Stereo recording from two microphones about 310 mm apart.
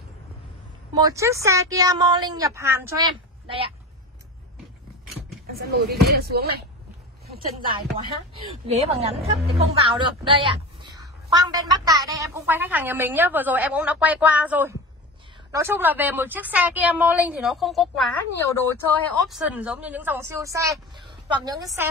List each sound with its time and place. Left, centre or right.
0.9 s a woman's voice: centre
5.5 s speech: right
8.6 s a woman's voice: centre